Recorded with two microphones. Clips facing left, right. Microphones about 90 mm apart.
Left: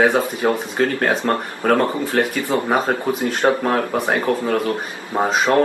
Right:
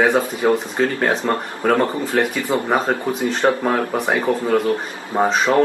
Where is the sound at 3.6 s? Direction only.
5° right (ahead or behind).